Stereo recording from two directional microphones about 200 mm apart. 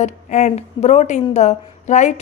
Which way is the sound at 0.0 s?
35° left (ahead or behind).